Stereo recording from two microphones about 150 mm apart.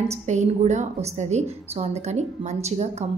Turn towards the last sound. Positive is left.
turn(degrees=-45)  # may be behind; listen again after turning